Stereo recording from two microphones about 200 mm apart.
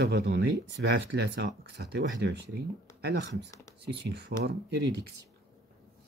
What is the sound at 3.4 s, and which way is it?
Speech, 15° left (ahead or behind).